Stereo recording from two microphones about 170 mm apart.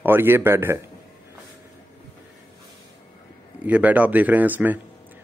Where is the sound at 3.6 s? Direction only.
10° right (ahead or behind).